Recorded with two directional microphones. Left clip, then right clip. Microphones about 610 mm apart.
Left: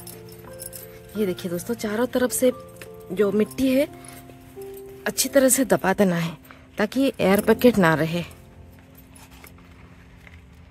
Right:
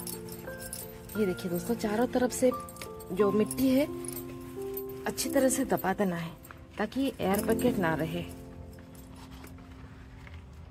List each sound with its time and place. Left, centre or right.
1.2 s speech: centre
5.0 s speech: centre